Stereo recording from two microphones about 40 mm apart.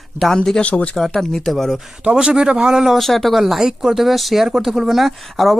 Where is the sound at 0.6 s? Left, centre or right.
Left.